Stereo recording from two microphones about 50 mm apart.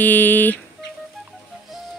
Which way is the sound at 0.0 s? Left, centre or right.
Left.